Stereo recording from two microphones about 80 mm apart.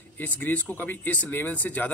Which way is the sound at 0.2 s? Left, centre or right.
Left.